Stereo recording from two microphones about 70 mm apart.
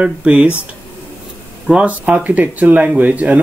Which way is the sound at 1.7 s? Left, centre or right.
Centre.